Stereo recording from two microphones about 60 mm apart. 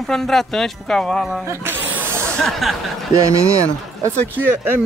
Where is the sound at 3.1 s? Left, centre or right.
Right.